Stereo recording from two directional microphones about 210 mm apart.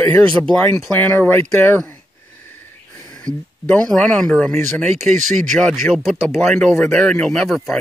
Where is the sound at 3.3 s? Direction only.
15° right (ahead or behind).